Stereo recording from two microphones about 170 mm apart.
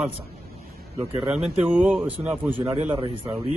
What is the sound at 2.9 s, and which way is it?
Speech, 30° right (ahead or behind).